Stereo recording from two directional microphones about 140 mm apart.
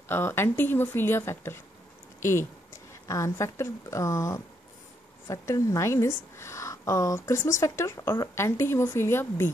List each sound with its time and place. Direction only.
0.1 s speech: 15° left (ahead or behind)
2.1 s a sound: 20° left (ahead or behind)
3.1 s a woman's voice: 25° left (ahead or behind)